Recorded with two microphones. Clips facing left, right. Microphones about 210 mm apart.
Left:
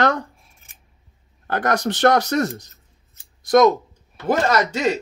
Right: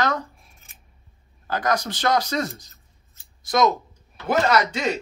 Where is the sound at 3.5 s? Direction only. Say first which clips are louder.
Left 6 dB; 50° left (ahead or behind).